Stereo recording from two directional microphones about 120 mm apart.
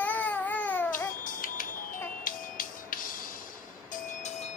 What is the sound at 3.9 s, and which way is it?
Vehicle, 70° left (ahead or behind).